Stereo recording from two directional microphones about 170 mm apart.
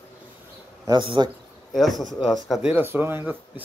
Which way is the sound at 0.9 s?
25° right (ahead or behind).